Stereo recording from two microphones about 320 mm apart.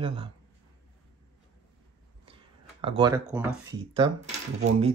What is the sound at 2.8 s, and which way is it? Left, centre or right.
Speech, centre.